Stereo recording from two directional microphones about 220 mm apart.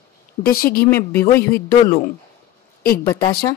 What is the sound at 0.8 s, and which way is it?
Speech, 10° left (ahead or behind).